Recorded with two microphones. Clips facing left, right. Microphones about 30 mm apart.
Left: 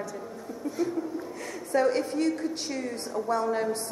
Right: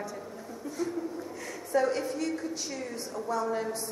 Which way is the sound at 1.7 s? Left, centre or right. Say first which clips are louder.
Left 3 dB; left.